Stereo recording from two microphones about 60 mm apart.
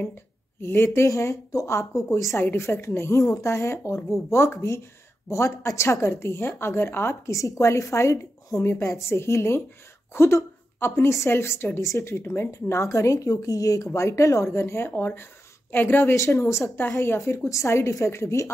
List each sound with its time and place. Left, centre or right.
0.6 s speech: left
1.0 s a woman's voice: left
2.3 s a woman's voice: left
7.3 s a woman's voice: left
13.9 s a woman's voice: left